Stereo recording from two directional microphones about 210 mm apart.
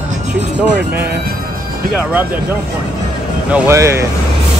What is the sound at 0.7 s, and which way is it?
Speech, 50° right (ahead or behind).